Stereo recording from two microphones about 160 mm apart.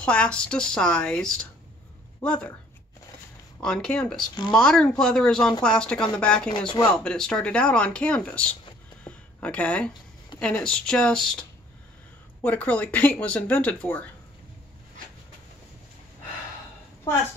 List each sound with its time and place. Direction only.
0.0 s speech: 5° left (ahead or behind)
3.6 s speech: 5° left (ahead or behind)
9.0 s a sound: 10° left (ahead or behind)
10.4 s speech: 5° left (ahead or behind)
12.4 s speech: 10° left (ahead or behind)